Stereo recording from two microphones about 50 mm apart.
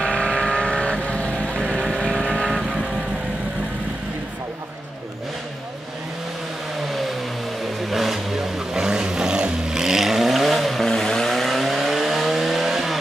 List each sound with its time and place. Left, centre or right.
0.1 s vehicle: centre
2.4 s vehicle: centre
6.9 s vehicle: centre